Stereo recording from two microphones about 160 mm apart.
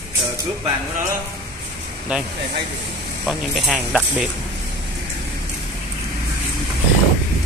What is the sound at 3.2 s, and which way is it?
Speech, 5° right (ahead or behind).